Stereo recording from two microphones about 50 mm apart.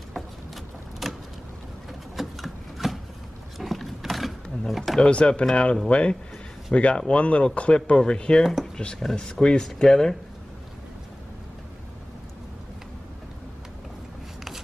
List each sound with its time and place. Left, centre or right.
1.0 s vehicle: centre
2.1 s rub: centre
3.5 s a sound: centre
5.0 s speech: left